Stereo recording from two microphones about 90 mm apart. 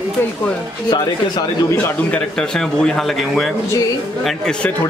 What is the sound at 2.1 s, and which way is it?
A man's voice, 10° left (ahead or behind).